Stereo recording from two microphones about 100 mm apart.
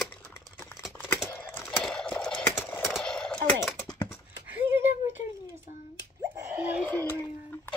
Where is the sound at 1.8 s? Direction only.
10° left (ahead or behind).